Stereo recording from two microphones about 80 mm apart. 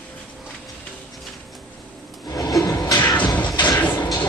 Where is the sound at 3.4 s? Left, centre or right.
Left.